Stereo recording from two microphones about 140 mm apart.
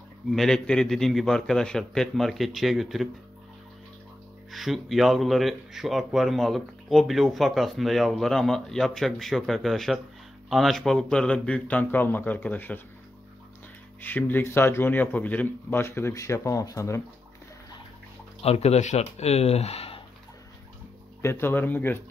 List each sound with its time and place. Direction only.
0.3 s speech: 5° left (ahead or behind)
4.5 s speech: centre (ahead or behind)
14.0 s speech: 15° left (ahead or behind)
18.4 s speech: 45° left (ahead or behind)
21.2 s speech: 15° left (ahead or behind)